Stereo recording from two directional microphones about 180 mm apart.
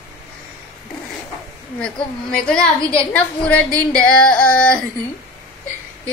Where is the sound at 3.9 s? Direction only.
5° left (ahead or behind).